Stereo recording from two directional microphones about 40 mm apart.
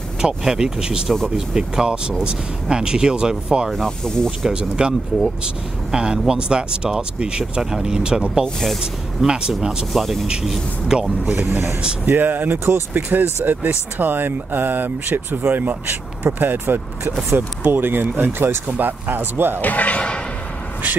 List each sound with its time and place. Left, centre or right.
0.2 s speech: centre
3.7 s speech: centre
4.5 s speech: right
9.9 s speech: centre
10.9 s speech: centre
11.3 s speech: right
12.1 s speech: right
19.6 s speech: left